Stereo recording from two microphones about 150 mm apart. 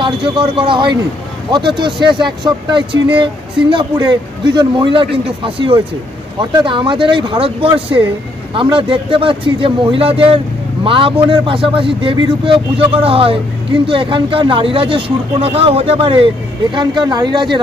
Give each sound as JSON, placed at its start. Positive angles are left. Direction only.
{"t": 0.0, "sound": "speech", "side_deg": -35}